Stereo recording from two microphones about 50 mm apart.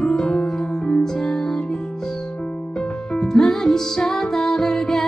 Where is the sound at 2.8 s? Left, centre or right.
Centre.